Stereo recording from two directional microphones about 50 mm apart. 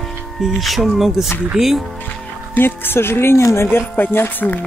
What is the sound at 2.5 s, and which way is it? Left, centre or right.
Speech, left.